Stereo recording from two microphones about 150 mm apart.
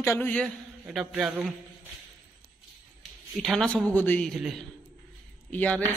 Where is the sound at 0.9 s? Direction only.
5° right (ahead or behind).